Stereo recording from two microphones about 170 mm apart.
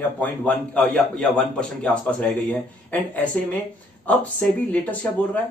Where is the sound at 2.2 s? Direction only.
10° left (ahead or behind).